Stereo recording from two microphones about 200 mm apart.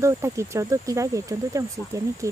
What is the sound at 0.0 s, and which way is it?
Speech, 15° right (ahead or behind).